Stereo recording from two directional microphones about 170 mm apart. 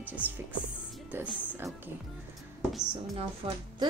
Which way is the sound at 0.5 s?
10° right (ahead or behind).